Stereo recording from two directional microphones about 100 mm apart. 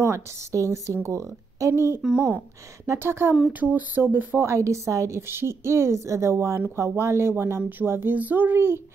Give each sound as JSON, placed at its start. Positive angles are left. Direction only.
{"t": 0.0, "sound": "a woman's voice", "side_deg": -30}
{"t": 2.0, "sound": "a woman's voice", "side_deg": -10}